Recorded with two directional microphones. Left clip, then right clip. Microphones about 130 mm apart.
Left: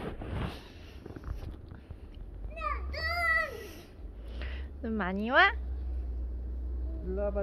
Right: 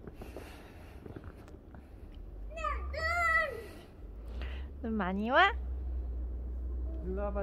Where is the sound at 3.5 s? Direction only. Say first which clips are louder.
Right 1 dB; 35° right (ahead or behind).